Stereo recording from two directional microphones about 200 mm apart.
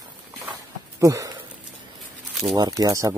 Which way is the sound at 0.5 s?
15° right (ahead or behind).